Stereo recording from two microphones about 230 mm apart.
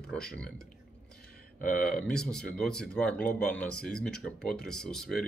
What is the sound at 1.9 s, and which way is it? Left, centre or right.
Speech, centre.